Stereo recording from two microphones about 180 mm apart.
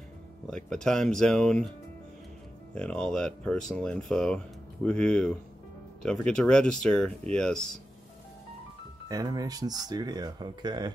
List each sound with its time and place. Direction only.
0.5 s speech: 5° left (ahead or behind)
2.7 s speech: 5° left (ahead or behind)
9.1 s speech: 20° right (ahead or behind)